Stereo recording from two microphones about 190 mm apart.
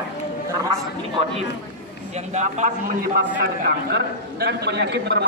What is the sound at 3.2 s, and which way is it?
A man's voice, 55° right (ahead or behind).